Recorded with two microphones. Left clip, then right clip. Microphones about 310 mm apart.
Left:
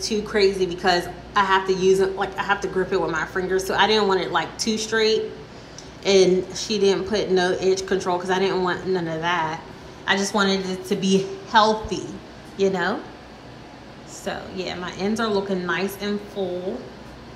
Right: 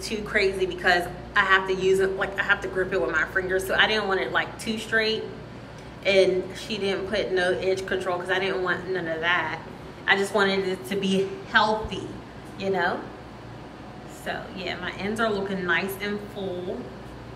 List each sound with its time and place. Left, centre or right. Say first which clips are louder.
0.0 s a woman's voice: left 4 dB; centre
14.2 s a woman's voice: left 2 dB; centre
16.4 s speech: left 7 dB; left